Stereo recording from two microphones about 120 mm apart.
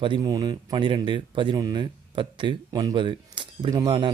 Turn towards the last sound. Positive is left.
turn(degrees=-40)  # may be behind; listen again after turning